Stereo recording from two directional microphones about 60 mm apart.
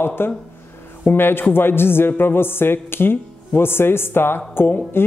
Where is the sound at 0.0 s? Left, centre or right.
Left.